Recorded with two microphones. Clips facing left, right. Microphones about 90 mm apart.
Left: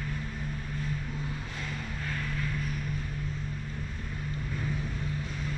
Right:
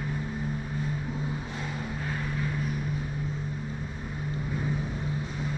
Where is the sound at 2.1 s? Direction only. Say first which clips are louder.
Right 1 dB; 15° right (ahead or behind).